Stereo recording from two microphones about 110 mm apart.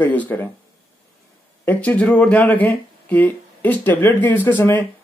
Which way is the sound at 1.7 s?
15° left (ahead or behind).